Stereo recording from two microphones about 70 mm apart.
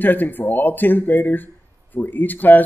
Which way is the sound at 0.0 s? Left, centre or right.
Left.